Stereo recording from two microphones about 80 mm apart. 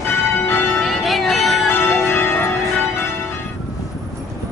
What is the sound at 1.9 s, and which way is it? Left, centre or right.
Change ringing, left.